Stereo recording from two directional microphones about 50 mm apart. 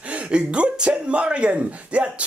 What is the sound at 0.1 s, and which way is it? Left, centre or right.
Speech, right.